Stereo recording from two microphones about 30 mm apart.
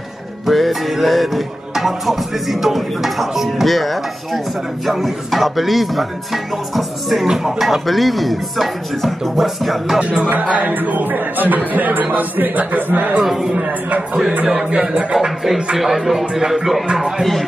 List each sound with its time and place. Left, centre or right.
0.5 s speech: centre
7.2 s speech: centre
9.9 s a man's voice: right
10.7 s speech: right
13.2 s a man's voice: centre
13.7 s a man's voice: right
14.7 s speech: right
15.1 s a man's voice: centre
17.2 s speech: centre